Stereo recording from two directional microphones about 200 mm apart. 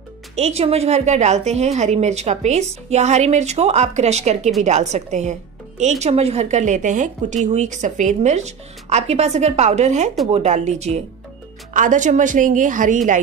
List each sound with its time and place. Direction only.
0.4 s a woman's voice: 30° right (ahead or behind)